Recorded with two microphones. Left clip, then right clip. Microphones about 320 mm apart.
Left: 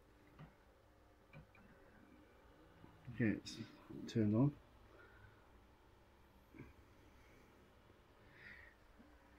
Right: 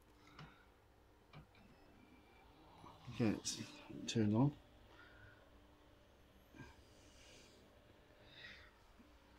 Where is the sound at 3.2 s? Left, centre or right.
Right.